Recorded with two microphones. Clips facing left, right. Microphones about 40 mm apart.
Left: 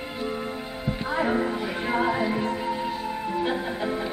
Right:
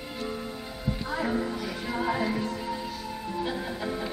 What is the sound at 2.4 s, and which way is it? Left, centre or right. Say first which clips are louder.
Music: left 5 dB; left.